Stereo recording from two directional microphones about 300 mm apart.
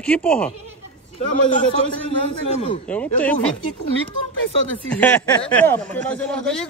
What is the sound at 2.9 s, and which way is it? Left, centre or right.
Speech, centre.